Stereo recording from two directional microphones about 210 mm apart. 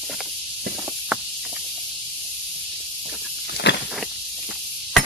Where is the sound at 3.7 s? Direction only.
55° left (ahead or behind).